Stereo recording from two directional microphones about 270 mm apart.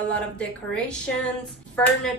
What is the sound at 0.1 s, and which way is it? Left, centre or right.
A woman's voice, centre.